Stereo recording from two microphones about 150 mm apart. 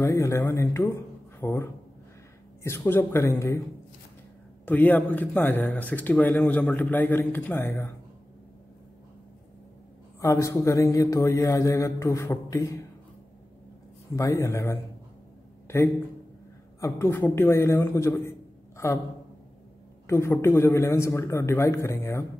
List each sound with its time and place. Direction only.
0.0 s speech: 20° left (ahead or behind)
4.6 s speech: 10° left (ahead or behind)
10.2 s speech: 20° left (ahead or behind)
14.1 s a man's voice: 20° left (ahead or behind)
20.1 s speech: 15° left (ahead or behind)